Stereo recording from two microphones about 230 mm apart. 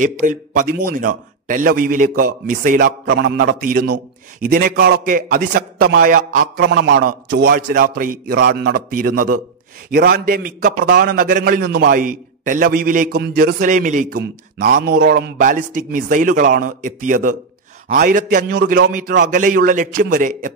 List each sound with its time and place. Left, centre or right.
0.0 s a man's voice: right